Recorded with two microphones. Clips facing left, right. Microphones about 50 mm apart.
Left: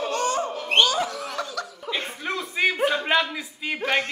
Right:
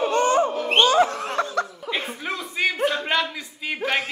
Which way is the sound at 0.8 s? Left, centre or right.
Right.